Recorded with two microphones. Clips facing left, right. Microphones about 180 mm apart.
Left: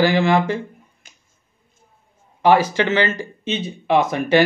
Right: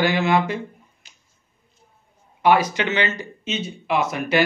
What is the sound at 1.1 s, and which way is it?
Finger snapping, 50° left (ahead or behind).